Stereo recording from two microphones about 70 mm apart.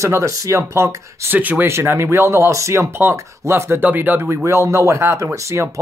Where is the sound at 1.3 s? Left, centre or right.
Right.